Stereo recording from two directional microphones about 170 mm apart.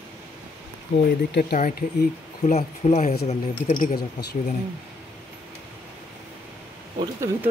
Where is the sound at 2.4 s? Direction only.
45° left (ahead or behind).